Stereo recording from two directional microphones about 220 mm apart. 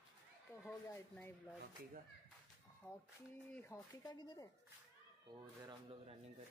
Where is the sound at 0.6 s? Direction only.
10° left (ahead or behind).